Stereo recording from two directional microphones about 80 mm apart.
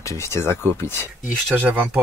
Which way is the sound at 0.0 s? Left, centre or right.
Left.